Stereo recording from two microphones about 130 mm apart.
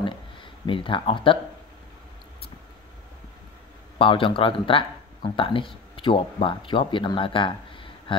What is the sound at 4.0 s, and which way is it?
Speech, 40° left (ahead or behind).